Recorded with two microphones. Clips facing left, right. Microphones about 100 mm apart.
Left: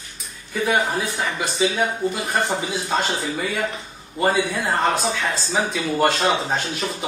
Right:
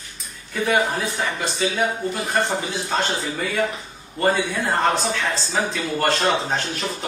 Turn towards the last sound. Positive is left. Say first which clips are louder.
# left 1 dB
turn(degrees=5)  # may be behind; listen again after turning